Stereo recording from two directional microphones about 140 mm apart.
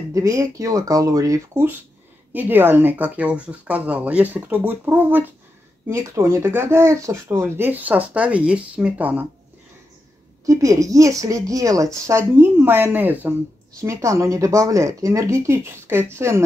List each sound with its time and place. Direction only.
0.1 s a woman's voice: 25° right (ahead or behind)
10.4 s a woman's voice: 25° right (ahead or behind)